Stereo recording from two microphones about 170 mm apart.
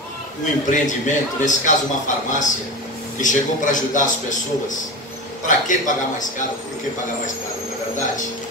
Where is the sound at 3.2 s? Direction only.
50° left (ahead or behind).